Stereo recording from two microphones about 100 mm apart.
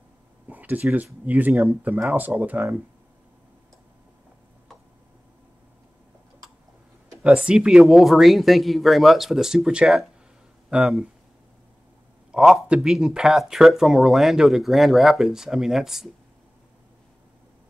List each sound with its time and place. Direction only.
0.5 s speech: 15° right (ahead or behind)
7.2 s speech: 10° right (ahead or behind)
12.3 s speech: 5° right (ahead or behind)